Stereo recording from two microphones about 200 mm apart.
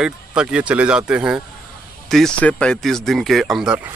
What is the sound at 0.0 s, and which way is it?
Speech, 5° right (ahead or behind).